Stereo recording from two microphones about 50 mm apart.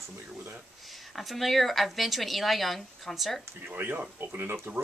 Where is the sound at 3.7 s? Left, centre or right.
Right.